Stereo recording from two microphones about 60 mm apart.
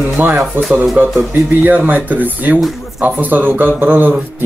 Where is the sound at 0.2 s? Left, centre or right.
Right.